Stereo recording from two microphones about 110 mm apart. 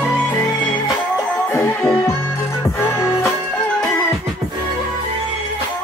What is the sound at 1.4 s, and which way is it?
Music, 20° left (ahead or behind).